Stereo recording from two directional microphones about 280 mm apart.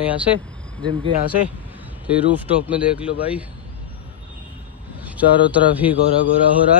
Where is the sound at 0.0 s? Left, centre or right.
Centre.